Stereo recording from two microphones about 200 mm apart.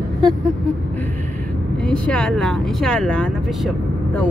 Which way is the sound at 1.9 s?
5° left (ahead or behind).